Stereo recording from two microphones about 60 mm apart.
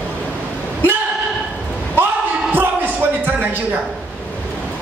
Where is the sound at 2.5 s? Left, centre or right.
Right.